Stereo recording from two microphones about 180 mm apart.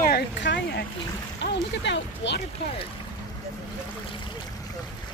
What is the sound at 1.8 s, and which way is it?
Speech, 80° left.